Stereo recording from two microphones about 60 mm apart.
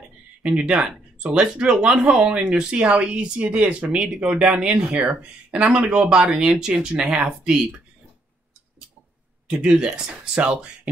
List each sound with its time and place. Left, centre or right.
0.4 s speech: centre
9.5 s speech: centre